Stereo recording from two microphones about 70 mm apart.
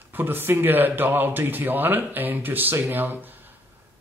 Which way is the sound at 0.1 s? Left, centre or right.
Right.